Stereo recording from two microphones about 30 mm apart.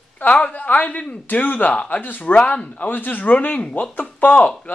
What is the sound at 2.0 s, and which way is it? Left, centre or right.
Speech, left.